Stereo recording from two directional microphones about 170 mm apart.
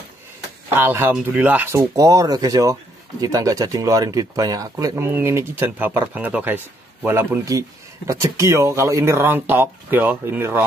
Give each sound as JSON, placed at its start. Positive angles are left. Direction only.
{"t": 0.7, "sound": "speech", "side_deg": -15}